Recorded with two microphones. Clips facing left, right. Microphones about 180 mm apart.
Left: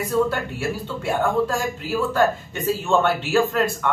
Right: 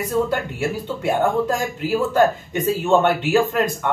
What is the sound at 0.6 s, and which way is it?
Speech, 20° right (ahead or behind).